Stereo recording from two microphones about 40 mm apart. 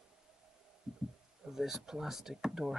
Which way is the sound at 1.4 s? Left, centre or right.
Centre.